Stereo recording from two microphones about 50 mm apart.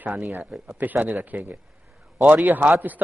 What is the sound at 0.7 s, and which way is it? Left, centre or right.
A man's voice, right.